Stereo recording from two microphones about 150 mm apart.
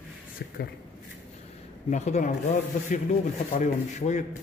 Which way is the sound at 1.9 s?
50° left (ahead or behind).